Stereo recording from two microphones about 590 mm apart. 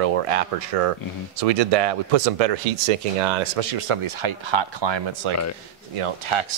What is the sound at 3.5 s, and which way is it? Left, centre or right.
Speech, right.